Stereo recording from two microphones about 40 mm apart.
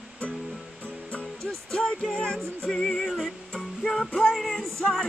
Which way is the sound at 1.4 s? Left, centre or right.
Centre.